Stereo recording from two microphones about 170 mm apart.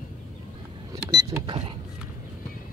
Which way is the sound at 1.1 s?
25° right (ahead or behind).